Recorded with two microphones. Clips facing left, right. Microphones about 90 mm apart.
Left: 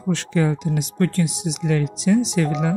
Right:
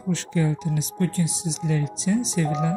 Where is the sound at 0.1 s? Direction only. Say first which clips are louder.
Left 4 dB; 90° left.